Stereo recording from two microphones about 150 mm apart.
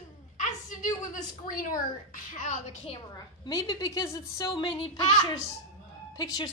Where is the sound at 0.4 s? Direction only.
55° left (ahead or behind).